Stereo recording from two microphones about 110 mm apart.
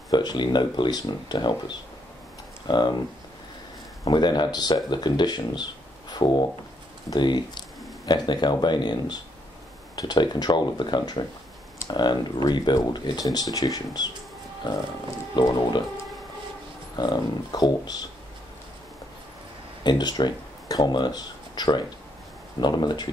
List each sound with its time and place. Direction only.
0.1 s speech: 40° left (ahead or behind)
2.7 s speech: 40° left (ahead or behind)
4.0 s speech: 40° left (ahead or behind)
15.3 s speech: 45° left (ahead or behind)
16.9 s speech: 40° left (ahead or behind)
19.8 s speech: 40° left (ahead or behind)